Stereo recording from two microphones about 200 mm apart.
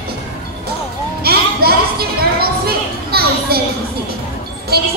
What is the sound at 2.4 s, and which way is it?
Children playing, 50° right (ahead or behind).